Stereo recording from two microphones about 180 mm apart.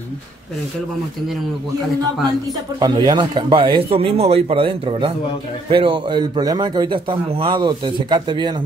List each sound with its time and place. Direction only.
2.8 s a man's voice: 25° right (ahead or behind)